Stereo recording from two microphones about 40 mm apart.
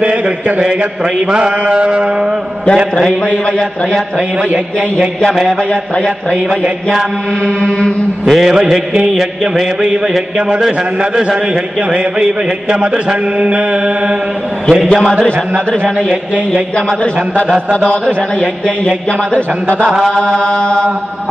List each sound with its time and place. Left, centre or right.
0.0 s mantra: right
8.3 s mantra: centre
8.9 s mantra: centre
11.0 s mantra: right
14.7 s a man's voice: centre
16.7 s a man's voice: left
20.1 s mantra: left